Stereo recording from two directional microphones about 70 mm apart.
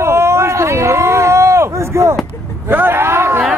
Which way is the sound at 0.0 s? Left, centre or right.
Right.